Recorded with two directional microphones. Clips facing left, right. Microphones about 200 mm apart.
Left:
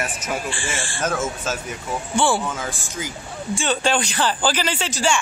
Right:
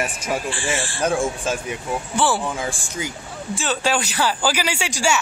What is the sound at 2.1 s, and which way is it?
Speech, centre (ahead or behind).